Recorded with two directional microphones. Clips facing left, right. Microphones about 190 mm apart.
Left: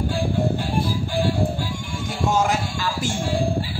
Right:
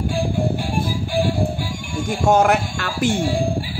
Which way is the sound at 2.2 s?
60° right (ahead or behind).